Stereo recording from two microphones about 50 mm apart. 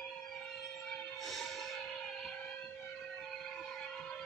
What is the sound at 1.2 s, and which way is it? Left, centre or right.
Music, centre.